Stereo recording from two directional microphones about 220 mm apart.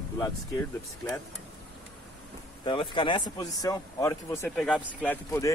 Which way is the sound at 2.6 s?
20° left (ahead or behind).